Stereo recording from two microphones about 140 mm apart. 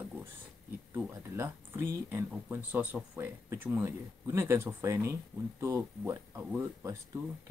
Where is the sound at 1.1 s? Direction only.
20° right (ahead or behind).